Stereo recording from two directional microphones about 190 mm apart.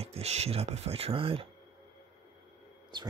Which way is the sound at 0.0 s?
35° right (ahead or behind).